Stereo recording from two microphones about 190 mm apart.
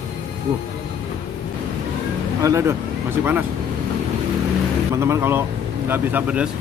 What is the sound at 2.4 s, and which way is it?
Speech, 15° right (ahead or behind).